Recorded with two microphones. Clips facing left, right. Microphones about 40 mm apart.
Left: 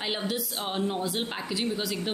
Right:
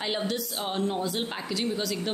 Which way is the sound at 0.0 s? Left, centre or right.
Centre.